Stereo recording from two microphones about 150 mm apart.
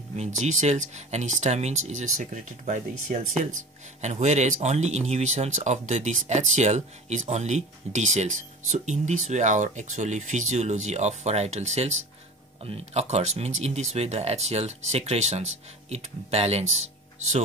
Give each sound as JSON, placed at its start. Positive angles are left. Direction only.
{"t": 0.1, "sound": "speech", "side_deg": -50}